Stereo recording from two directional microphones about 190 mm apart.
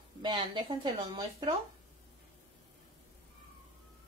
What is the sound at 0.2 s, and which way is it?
Speech, 25° right (ahead or behind).